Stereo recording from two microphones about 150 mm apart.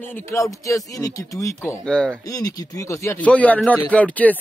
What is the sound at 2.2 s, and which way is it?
Speech, 25° left (ahead or behind).